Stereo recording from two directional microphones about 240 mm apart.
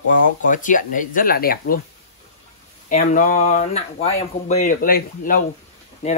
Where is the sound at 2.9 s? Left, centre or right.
Left.